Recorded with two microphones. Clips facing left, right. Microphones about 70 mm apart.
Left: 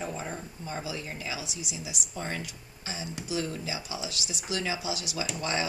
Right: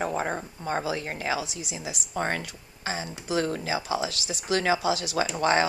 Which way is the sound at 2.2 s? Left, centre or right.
Right.